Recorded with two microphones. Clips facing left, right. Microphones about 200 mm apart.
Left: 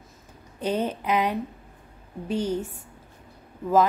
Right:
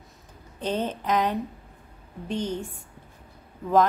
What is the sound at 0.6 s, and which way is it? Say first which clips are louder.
A woman's voice: left 2 dB; 10° left (ahead or behind).